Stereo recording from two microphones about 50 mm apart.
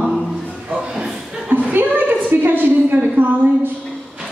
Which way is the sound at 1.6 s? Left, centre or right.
Right.